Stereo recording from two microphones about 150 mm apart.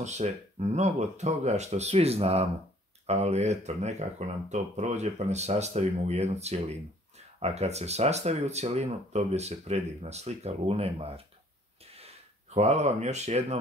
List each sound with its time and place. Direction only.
0.0 s speech: 50° right (ahead or behind)
11.8 s a sound: 40° right (ahead or behind)
12.5 s speech: 45° right (ahead or behind)